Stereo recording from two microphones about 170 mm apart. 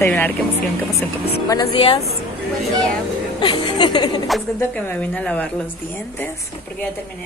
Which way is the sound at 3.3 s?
25° left (ahead or behind).